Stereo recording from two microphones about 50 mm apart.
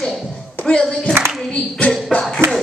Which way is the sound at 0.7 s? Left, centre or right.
Centre.